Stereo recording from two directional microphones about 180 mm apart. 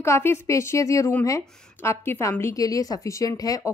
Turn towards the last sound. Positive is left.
turn(degrees=20)  # may be behind; listen again after turning